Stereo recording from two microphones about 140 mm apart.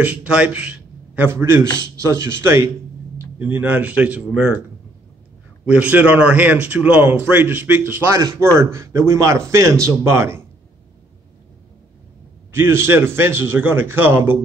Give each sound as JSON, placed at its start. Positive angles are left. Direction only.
{"t": 0.0, "sound": "a man's voice", "side_deg": -10}
{"t": 5.7, "sound": "a man's voice", "side_deg": -10}
{"t": 12.5, "sound": "a man's voice", "side_deg": -15}